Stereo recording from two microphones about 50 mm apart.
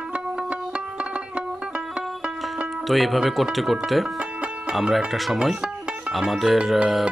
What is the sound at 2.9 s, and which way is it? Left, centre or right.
Speech, centre.